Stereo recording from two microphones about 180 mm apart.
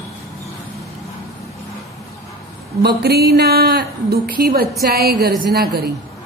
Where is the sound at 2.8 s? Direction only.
65° right (ahead or behind).